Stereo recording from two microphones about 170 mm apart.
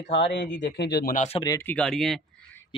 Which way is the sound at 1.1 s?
40° left (ahead or behind).